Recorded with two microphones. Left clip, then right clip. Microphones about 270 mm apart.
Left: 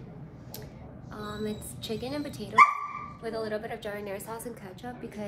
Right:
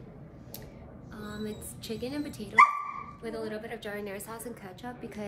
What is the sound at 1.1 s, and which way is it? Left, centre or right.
A woman's voice, centre.